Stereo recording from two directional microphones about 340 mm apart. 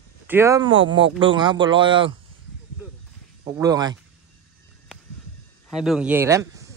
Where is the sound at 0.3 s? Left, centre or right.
Centre.